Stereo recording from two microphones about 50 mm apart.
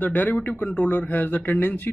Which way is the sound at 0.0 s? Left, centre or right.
Left.